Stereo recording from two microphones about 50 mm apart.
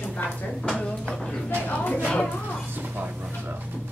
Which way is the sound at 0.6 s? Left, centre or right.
Centre.